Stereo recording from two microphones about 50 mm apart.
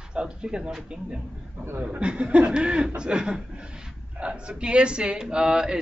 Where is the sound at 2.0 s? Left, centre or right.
Right.